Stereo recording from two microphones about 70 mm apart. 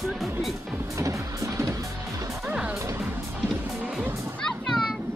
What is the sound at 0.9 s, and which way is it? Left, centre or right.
Music, right.